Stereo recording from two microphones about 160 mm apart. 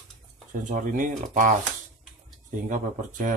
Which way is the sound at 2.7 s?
55° right (ahead or behind).